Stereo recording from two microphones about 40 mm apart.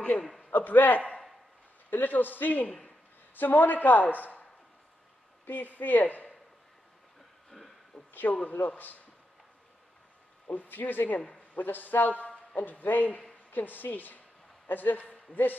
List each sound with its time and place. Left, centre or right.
0.5 s a sound: left
1.9 s a man's voice: left
5.5 s a man's voice: left
7.5 s a sound: centre
8.1 s a man's voice: left
10.4 s a man's voice: left